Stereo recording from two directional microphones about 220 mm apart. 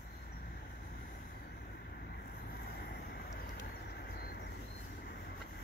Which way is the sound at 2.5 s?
45° left (ahead or behind).